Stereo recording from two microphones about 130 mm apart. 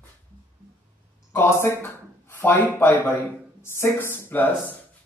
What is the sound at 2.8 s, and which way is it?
Speech, 15° left (ahead or behind).